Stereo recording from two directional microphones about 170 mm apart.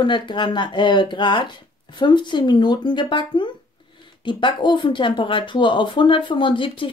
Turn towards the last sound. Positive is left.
turn(degrees=30)  # may be behind; listen again after turning